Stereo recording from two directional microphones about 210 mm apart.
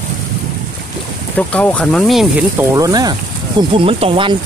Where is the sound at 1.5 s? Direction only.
5° left (ahead or behind).